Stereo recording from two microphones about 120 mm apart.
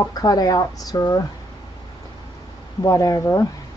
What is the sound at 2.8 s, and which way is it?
Speech, 30° left (ahead or behind).